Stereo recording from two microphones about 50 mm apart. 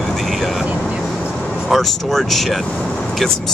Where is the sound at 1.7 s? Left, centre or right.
Centre.